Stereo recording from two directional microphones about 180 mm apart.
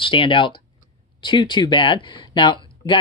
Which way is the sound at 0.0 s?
30° left (ahead or behind).